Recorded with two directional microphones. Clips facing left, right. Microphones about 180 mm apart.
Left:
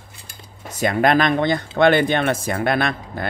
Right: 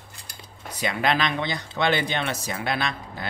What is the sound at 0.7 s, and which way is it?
Speech, 45° left (ahead or behind).